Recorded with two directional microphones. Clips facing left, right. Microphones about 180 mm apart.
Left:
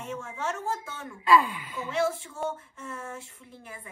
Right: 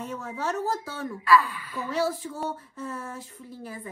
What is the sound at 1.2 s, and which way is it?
Speech, 20° left (ahead or behind).